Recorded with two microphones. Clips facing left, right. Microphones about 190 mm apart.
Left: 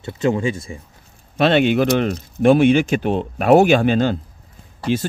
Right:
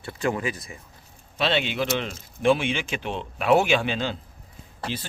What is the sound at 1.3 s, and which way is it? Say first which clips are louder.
A man's voice: left 10 dB; 50° left (ahead or behind).